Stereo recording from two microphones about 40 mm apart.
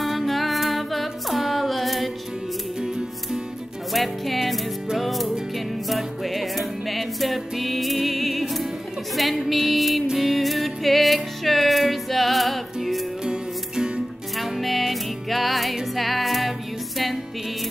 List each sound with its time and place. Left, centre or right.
0.0 s music: centre
3.9 s music: centre
13.2 s music: right
14.3 s music: centre